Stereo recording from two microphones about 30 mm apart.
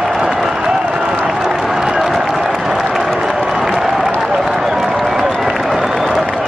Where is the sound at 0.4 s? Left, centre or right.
Centre.